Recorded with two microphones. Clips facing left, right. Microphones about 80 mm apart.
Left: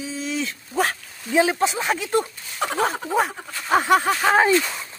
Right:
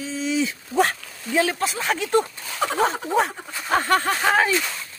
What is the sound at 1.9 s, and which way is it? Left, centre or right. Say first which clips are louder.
Speech: right 1 dB; centre.